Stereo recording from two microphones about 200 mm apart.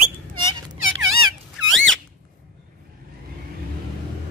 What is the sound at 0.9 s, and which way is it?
Squeak, 80° right.